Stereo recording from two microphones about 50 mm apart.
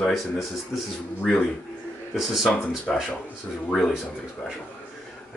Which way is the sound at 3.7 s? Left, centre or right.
Centre.